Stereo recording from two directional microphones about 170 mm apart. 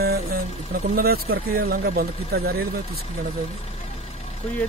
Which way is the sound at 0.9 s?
65° right (ahead or behind).